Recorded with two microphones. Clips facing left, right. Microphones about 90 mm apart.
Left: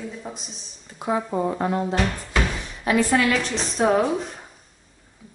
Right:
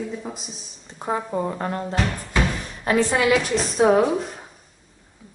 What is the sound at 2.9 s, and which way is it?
Speech, 30° right (ahead or behind).